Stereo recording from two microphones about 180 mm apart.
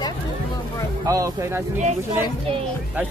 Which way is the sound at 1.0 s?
20° right (ahead or behind).